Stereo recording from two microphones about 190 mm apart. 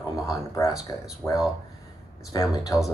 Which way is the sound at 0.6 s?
20° left (ahead or behind).